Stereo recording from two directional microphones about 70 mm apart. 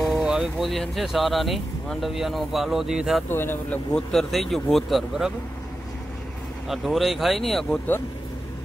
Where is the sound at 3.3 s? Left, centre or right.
Left.